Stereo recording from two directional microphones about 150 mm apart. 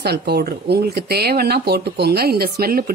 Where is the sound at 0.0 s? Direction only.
90° right.